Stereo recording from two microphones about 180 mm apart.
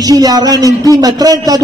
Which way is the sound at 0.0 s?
20° right (ahead or behind).